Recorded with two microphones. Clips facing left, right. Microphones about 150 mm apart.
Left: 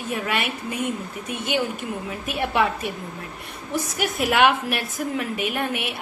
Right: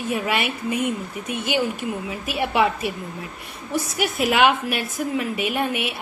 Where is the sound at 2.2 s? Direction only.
5° right (ahead or behind).